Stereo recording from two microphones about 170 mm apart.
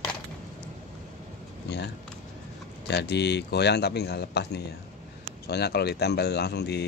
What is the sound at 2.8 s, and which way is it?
A man's voice, 85° left.